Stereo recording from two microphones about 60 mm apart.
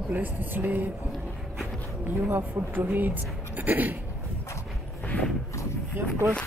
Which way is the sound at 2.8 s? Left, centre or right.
Right.